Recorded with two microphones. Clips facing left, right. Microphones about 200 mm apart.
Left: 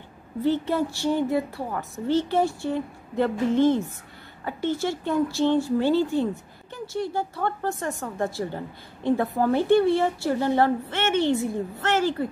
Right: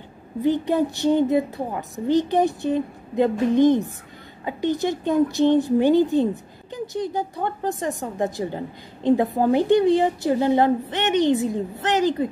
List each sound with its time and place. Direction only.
0.4 s speech: 15° right (ahead or behind)